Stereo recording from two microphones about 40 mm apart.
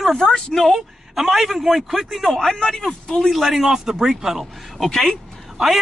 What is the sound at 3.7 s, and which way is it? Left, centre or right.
Speech, centre.